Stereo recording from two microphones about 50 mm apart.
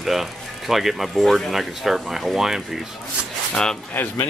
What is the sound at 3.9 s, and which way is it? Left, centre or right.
Speech, left.